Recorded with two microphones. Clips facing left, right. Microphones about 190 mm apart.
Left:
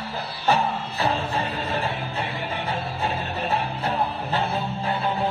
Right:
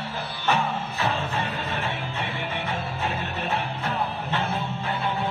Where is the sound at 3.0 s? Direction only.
35° left (ahead or behind).